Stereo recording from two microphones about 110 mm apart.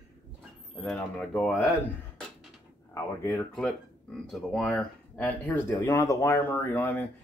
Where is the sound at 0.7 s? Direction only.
10° left (ahead or behind).